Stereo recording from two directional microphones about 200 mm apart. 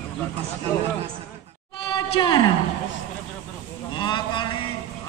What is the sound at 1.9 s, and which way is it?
Speech, 20° left (ahead or behind).